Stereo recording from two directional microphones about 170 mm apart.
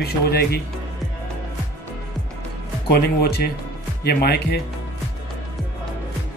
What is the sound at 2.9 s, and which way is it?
Speech, 70° left (ahead or behind).